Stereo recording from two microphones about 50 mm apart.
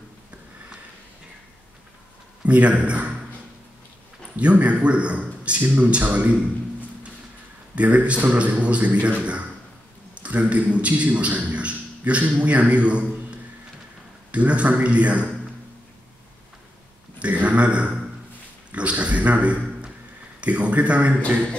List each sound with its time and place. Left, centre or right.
2.4 s speech: right
4.4 s speech: right
7.7 s speech: right
10.2 s a man's voice: right
17.2 s a man's voice: right